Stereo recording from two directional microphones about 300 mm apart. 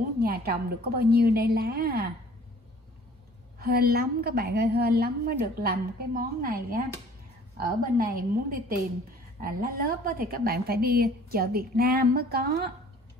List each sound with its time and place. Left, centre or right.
0.2 s a woman's voice: right
3.5 s a woman's voice: right